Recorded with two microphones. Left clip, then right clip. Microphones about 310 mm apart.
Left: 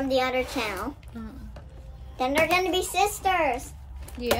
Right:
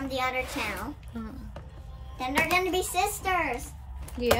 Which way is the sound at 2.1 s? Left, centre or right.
Centre.